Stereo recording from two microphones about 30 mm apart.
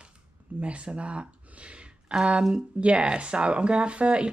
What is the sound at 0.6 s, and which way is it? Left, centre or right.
Speech, right.